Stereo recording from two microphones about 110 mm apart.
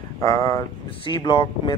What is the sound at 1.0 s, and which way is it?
Speech, 45° left (ahead or behind).